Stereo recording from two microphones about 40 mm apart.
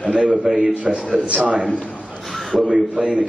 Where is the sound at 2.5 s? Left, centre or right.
Centre.